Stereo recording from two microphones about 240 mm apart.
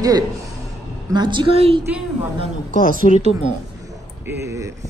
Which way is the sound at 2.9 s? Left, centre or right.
Right.